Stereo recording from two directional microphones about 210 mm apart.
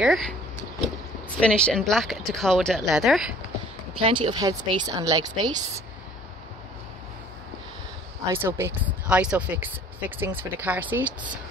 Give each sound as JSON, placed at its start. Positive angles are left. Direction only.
{"t": 0.0, "sound": "speech", "side_deg": 0}
{"t": 1.4, "sound": "speech", "side_deg": 5}
{"t": 4.0, "sound": "speech", "side_deg": -25}
{"t": 8.3, "sound": "speech", "side_deg": -10}